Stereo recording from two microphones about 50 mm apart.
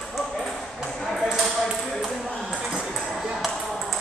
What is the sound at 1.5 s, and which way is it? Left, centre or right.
Speech, centre.